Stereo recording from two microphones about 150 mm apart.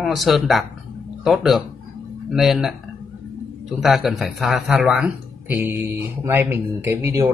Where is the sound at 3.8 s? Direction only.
Centre (ahead or behind); by 7.3 s 15° right (ahead or behind).